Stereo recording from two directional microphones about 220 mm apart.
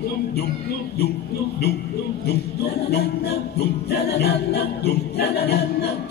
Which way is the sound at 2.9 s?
45° left (ahead or behind).